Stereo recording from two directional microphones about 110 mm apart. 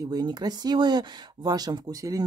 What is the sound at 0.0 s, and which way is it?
Speech, 35° right (ahead or behind).